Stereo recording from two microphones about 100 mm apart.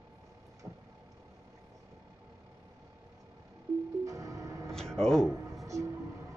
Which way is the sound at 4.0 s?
30° right (ahead or behind).